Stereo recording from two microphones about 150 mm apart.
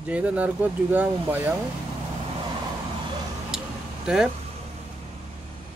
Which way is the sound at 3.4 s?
5° right (ahead or behind).